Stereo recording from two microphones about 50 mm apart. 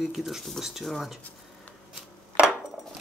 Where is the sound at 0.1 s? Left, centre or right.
Centre.